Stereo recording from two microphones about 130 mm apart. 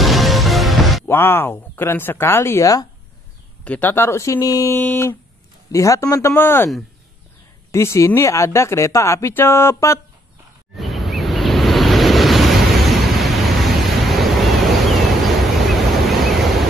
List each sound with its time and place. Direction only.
0.0 s music: centre (ahead or behind)
1.0 s speech: 20° left (ahead or behind)
3.6 s speech: 10° left (ahead or behind)
7.7 s speech: 20° left (ahead or behind)
10.8 s waves: centre (ahead or behind)
15.7 s a sound: centre (ahead or behind)